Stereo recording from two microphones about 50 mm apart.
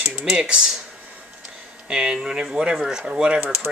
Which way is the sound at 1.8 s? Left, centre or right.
Centre.